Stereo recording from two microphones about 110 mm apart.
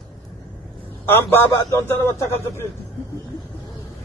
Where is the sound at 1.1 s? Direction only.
20° left (ahead or behind).